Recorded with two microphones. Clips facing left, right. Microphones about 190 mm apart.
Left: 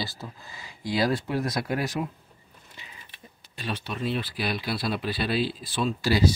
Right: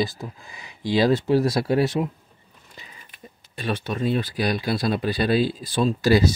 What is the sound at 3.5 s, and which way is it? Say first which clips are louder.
Speech: right 6 dB; 55° right (ahead or behind).